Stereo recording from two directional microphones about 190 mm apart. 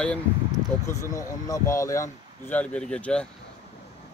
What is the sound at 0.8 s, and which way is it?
Speech, 15° left (ahead or behind).